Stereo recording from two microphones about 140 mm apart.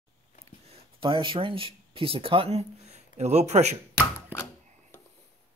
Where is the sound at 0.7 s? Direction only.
35° right (ahead or behind); by 3.7 s 50° right (ahead or behind).